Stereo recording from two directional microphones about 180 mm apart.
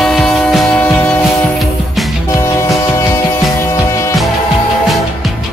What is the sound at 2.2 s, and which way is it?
Music, 15° left (ahead or behind).